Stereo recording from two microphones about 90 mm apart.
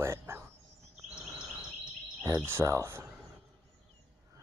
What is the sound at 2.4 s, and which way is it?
Speech, 25° right (ahead or behind).